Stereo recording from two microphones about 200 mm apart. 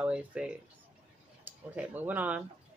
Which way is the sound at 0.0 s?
5° right (ahead or behind).